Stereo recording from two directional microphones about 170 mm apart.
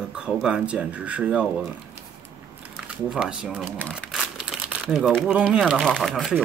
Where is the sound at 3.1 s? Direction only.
5° right (ahead or behind).